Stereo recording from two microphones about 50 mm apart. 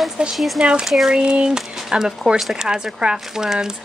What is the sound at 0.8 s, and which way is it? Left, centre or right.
Speech, centre.